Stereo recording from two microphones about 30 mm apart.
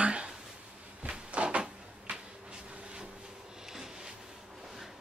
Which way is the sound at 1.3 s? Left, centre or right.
Right.